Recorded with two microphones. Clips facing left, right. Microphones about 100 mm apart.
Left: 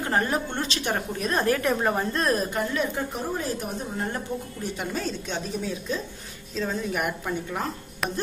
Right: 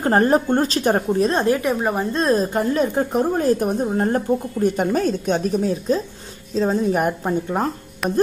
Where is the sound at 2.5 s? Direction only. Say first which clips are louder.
Right 8 dB; 40° right (ahead or behind).